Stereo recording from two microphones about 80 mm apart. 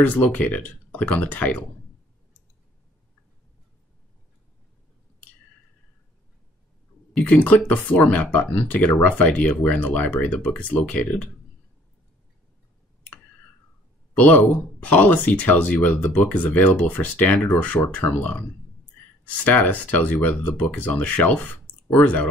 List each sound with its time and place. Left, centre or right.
0.0 s speech: centre
7.2 s speech: centre
14.1 s speech: centre